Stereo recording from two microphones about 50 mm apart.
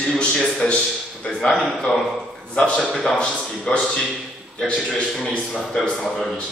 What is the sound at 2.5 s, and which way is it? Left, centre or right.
A man's voice, left.